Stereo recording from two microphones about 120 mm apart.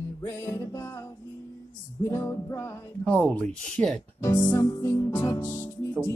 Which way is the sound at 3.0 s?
10° left (ahead or behind).